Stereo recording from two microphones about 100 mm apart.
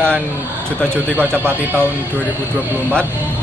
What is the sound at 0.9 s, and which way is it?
Speech, 20° right (ahead or behind).